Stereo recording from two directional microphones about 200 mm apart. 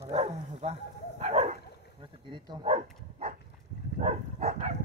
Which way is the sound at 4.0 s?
35° right (ahead or behind).